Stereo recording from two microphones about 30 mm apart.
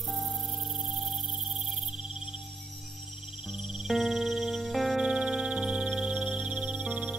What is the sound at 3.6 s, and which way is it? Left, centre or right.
Music, centre.